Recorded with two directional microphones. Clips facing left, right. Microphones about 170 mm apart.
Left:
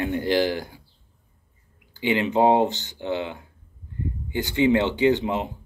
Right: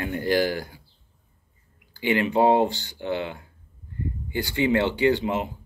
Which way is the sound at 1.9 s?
20° left (ahead or behind).